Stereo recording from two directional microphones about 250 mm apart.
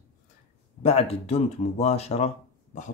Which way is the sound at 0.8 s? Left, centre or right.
Left.